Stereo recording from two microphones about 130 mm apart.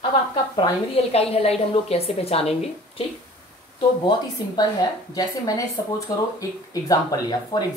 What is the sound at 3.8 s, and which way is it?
A woman's voice, 35° left (ahead or behind).